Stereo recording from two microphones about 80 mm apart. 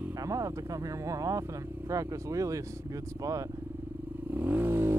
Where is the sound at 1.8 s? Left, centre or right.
Right.